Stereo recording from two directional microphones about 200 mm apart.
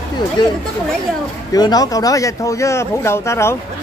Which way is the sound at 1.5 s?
20° left (ahead or behind).